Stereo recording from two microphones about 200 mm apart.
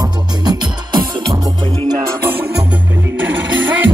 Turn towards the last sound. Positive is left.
turn(degrees=-70)  # may be behind; listen again after turning